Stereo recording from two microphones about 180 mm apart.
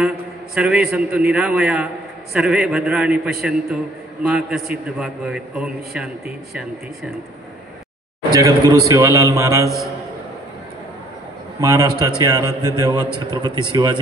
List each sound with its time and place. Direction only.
0.6 s a man's voice: 5° right (ahead or behind)
8.3 s a man's voice: 20° right (ahead or behind)
11.6 s a man's voice: 20° right (ahead or behind)